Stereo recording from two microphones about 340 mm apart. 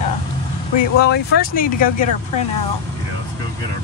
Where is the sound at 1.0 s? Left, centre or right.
Left.